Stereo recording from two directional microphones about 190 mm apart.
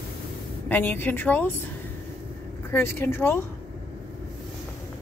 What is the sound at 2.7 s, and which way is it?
Speech, 10° left (ahead or behind).